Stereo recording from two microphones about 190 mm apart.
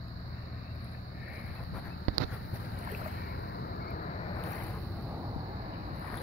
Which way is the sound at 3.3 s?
55° left (ahead or behind).